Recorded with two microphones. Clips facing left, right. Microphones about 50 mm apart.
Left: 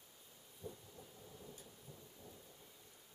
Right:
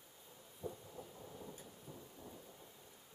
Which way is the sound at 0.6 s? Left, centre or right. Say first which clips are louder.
Right 5 dB; right.